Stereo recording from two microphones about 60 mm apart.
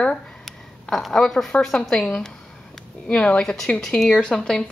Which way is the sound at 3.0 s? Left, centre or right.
Centre.